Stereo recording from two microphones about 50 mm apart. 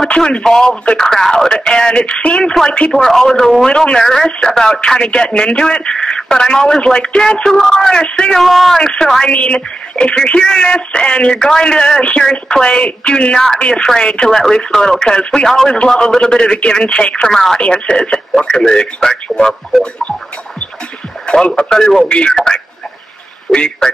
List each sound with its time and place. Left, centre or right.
0.1 s speech: centre
8.4 s speech: centre
9.3 s speech: left
19.8 s speech: left
21.3 s speech: left
21.6 s speech: centre